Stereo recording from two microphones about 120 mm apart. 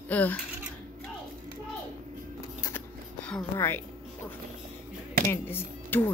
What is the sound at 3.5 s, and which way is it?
Speech, 20° left (ahead or behind).